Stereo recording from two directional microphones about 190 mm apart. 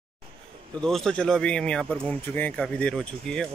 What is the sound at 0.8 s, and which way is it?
Speech, 5° left (ahead or behind).